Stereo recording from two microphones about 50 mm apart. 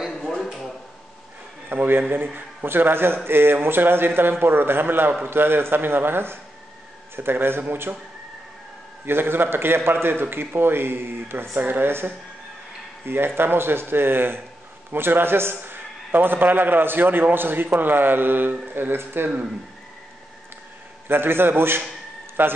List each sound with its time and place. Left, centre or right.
1.7 s a man's voice: right
9.0 s a man's voice: right
21.1 s a man's voice: right